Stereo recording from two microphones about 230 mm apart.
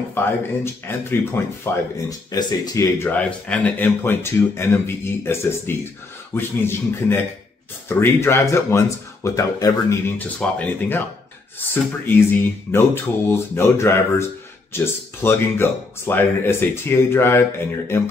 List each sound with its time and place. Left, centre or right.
0.1 s speech: centre